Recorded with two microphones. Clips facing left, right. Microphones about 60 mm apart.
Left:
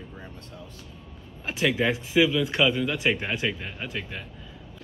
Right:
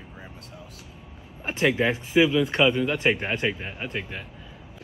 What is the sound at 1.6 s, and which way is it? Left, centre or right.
A man's voice, centre.